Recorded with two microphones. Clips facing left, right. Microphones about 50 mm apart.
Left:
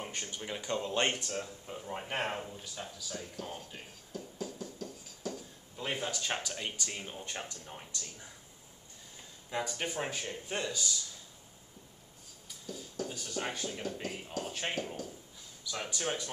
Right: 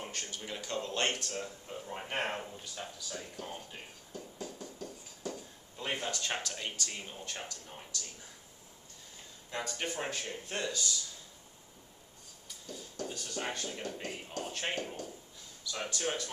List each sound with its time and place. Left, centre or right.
0.0 s speech: centre
3.2 s a sound: centre
7.2 s speech: centre
9.5 s speech: centre
12.6 s speech: centre
15.9 s speech: centre